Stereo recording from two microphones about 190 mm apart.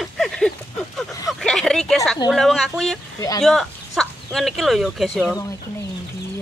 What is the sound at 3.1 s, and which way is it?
Speech, 20° left (ahead or behind).